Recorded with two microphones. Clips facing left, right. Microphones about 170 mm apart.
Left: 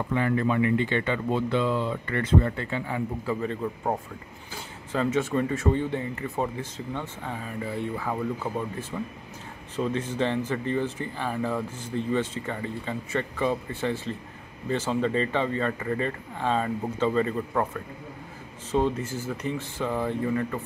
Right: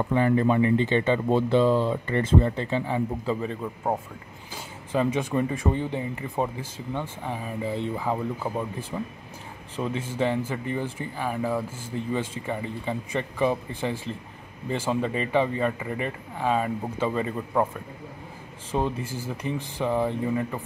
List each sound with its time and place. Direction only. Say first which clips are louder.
0.1 s speech: right 3 dB; 30° right (ahead or behind)
4.9 s speech: right 1 dB; 15° right (ahead or behind)
18.9 s speech: left 1 dB; 10° right (ahead or behind)